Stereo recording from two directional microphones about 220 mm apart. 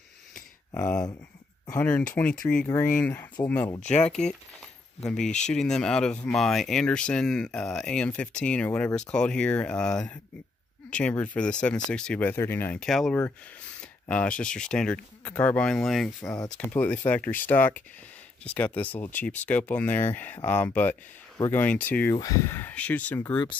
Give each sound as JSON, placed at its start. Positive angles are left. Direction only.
{"t": 0.7, "sound": "speech", "side_deg": 15}